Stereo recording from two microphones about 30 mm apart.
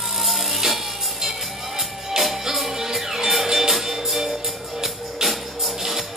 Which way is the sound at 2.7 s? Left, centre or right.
Centre.